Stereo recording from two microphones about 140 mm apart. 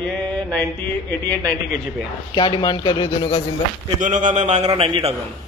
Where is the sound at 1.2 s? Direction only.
15° left (ahead or behind).